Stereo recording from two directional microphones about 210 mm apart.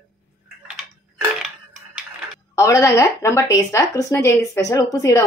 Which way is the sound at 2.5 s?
15° left (ahead or behind).